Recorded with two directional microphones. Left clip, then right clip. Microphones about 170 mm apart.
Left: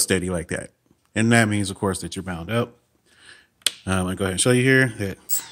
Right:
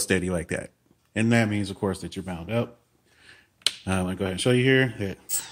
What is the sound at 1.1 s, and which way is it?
Speech, 35° left (ahead or behind).